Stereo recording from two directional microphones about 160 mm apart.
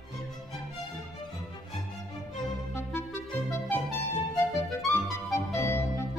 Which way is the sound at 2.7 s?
15° left (ahead or behind).